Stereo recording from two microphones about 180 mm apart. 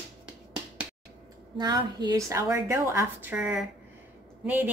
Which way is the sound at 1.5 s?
25° right (ahead or behind).